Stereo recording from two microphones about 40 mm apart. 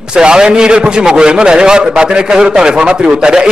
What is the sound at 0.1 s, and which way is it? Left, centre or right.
A man's voice, right.